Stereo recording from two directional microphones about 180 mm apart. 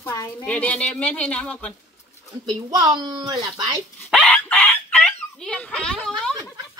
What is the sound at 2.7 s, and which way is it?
Speech, 25° right (ahead or behind).